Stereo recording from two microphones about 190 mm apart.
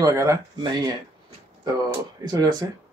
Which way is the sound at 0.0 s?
15° right (ahead or behind).